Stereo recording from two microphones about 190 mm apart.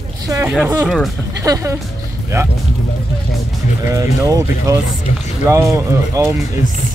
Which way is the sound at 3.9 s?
15° right (ahead or behind).